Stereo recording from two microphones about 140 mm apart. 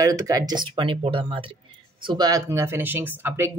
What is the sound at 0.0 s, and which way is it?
Speech, 25° right (ahead or behind).